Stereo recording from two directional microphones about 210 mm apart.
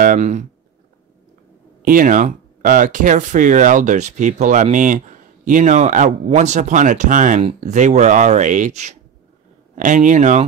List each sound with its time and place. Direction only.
0.0 s speech: 35° right (ahead or behind)
1.9 s speech: 40° right (ahead or behind)